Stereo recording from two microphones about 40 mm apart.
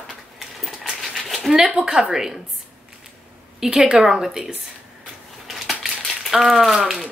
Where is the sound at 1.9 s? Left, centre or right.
Centre.